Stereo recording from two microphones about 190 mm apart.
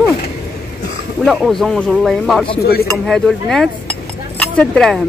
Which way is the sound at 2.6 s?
55° left (ahead or behind).